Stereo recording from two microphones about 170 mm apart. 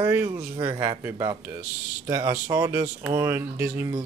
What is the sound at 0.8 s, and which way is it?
Speech, 20° right (ahead or behind).